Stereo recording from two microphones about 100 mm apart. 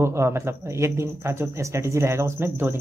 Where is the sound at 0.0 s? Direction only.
25° right (ahead or behind).